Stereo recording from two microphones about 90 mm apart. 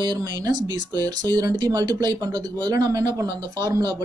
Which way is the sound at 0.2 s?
45° right (ahead or behind).